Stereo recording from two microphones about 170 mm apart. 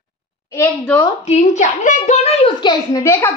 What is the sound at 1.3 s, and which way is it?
A child's voice, 45° left (ahead or behind).